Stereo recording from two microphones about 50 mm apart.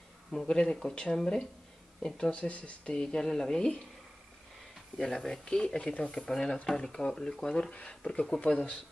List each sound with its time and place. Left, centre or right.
0.3 s speech: centre
2.3 s speech: left; by 3.7 s centre
4.9 s speech: centre; by 8.7 s left